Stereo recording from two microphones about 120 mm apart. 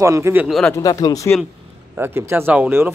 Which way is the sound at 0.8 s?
30° left (ahead or behind).